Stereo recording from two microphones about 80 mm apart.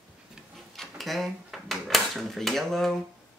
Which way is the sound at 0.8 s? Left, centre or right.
Centre.